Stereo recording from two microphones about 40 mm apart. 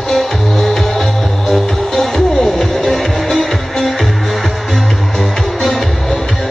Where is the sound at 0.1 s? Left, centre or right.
Centre.